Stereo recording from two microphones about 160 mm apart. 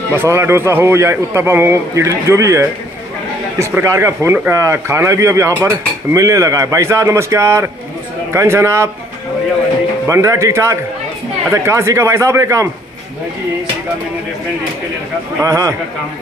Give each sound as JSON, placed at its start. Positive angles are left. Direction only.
{"t": 0.1, "sound": "a man's voice", "side_deg": -15}
{"t": 10.0, "sound": "a man's voice", "side_deg": -20}
{"t": 15.4, "sound": "a man's voice", "side_deg": -20}